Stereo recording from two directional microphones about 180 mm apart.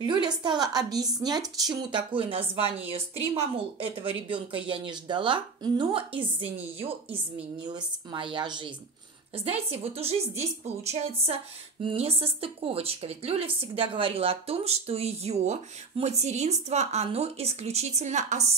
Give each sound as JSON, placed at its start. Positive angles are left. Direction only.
{"t": 0.0, "sound": "a woman's voice", "side_deg": -25}